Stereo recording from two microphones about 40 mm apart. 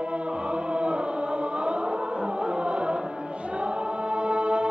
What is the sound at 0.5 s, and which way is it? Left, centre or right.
Chant, right.